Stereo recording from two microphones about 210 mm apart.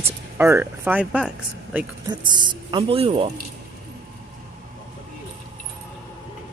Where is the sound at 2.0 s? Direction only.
20° right (ahead or behind).